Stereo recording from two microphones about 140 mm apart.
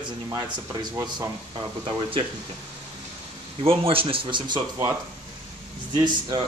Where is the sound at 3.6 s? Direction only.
40° right (ahead or behind).